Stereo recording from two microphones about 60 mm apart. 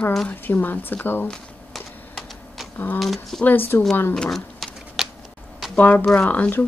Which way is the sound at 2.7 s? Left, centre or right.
Left.